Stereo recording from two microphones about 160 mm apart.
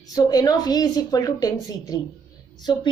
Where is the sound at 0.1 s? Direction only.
25° left (ahead or behind).